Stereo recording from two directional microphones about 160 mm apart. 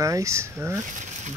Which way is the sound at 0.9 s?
50° right (ahead or behind).